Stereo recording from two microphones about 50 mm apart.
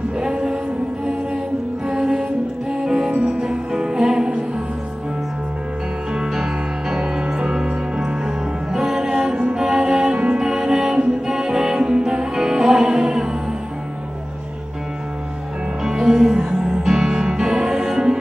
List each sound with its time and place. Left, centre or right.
0.2 s music: centre
1.9 s music: centre
6.1 s music: centre
15.8 s music: centre